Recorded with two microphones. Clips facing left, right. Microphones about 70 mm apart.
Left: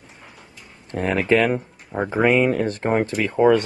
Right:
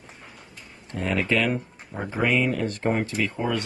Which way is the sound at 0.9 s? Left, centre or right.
Left.